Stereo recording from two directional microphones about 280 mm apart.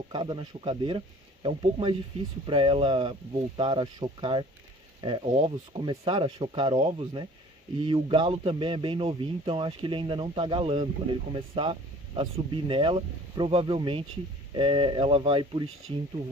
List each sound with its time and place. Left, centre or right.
0.1 s speech: centre